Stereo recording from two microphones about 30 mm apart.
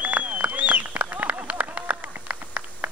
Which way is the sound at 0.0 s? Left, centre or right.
Right.